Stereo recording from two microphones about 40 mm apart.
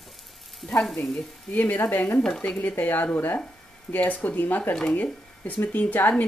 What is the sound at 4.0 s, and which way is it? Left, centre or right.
Speech, left.